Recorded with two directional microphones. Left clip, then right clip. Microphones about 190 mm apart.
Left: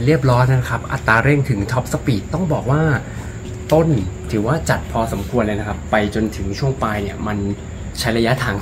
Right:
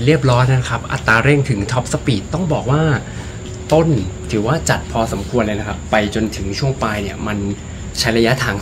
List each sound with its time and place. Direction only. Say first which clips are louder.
0.0 s speech: right 1 dB; 10° right (ahead or behind)
4.3 s speech: right 2 dB; 10° right (ahead or behind)